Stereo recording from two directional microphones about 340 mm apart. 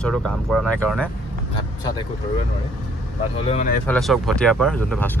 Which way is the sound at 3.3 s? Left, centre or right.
Centre.